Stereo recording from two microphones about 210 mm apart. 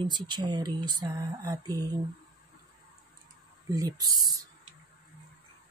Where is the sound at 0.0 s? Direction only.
20° right (ahead or behind).